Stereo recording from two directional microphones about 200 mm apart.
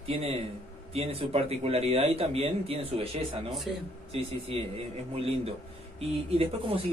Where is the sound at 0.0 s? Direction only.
30° right (ahead or behind).